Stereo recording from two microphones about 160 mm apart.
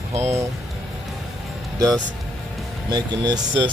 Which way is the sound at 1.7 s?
20° right (ahead or behind).